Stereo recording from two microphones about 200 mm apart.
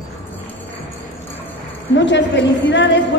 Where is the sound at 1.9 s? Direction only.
60° left (ahead or behind).